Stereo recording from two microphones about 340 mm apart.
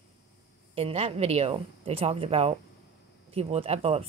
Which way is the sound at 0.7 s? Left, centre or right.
Centre.